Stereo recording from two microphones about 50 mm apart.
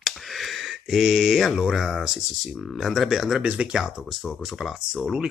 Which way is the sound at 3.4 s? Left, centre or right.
Right.